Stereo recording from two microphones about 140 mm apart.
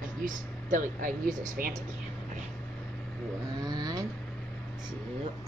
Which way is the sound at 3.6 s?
30° right (ahead or behind).